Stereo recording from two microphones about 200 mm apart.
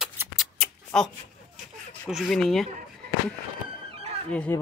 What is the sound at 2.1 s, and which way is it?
Speech, centre (ahead or behind).